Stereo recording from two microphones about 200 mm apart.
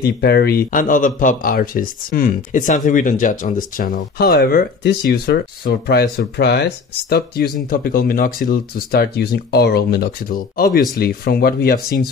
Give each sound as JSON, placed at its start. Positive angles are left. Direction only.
{"t": 0.0, "sound": "speech", "side_deg": 55}